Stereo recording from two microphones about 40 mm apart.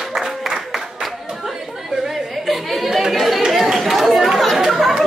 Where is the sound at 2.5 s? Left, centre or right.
Centre.